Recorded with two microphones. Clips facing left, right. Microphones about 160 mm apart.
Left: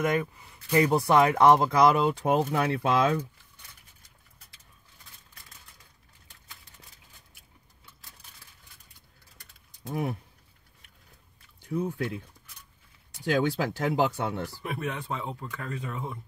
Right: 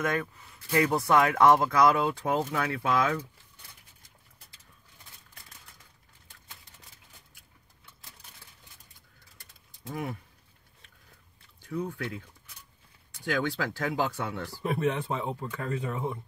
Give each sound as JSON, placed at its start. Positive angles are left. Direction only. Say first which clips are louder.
{"t": 0.0, "sound": "speech", "louder": "left 3 dB", "side_deg": 15}
{"t": 9.8, "sound": "speech", "louder": "left 4 dB", "side_deg": 20}
{"t": 11.6, "sound": "speech", "louder": "left 3 dB", "side_deg": 20}
{"t": 13.2, "sound": "speech", "louder": "left 4 dB", "side_deg": 20}
{"t": 14.5, "sound": "speech", "louder": "right 5 dB", "side_deg": -25}